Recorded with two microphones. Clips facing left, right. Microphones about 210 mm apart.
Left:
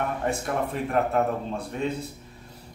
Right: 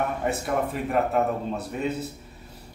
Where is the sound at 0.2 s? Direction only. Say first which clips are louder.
Right 1 dB; 5° right (ahead or behind).